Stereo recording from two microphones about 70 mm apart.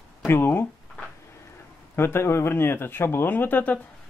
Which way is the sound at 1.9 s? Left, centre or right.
Left.